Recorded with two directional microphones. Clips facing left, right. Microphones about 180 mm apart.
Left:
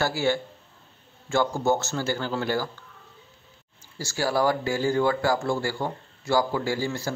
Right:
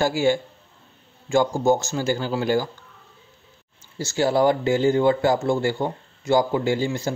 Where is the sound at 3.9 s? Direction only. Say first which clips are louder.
Right 5 dB; 20° right (ahead or behind).